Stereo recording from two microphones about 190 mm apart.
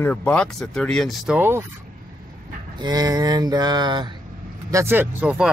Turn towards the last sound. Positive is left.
turn(degrees=-5)  # may be behind; listen again after turning